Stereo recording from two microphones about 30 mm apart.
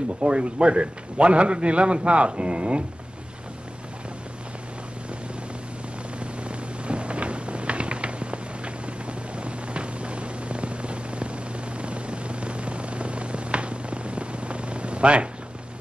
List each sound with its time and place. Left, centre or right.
0.2 s a man's voice: right
6.1 s a sound: right
11.8 s helicopter: right